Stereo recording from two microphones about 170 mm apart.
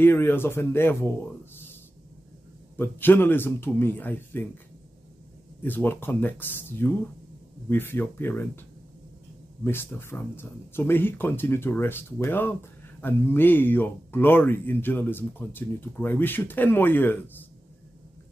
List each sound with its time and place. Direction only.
0.0 s speech: 15° left (ahead or behind)
2.8 s speech: 10° left (ahead or behind)
5.6 s speech: 10° left (ahead or behind)